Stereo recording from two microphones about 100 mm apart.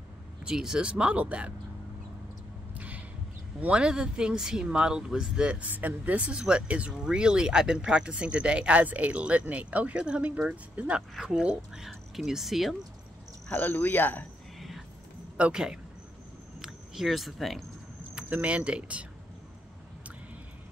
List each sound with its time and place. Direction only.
0.5 s speech: 5° right (ahead or behind)
2.8 s a sound: 15° right (ahead or behind)
3.6 s speech: 10° right (ahead or behind)
13.5 s speech: 15° left (ahead or behind)
15.3 s speech: 10° right (ahead or behind)
18.1 s speech: 15° right (ahead or behind)